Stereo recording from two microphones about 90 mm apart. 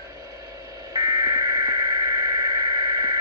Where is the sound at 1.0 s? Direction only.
45° right (ahead or behind).